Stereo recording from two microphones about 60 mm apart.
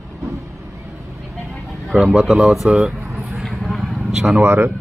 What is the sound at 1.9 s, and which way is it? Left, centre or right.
Speech, centre.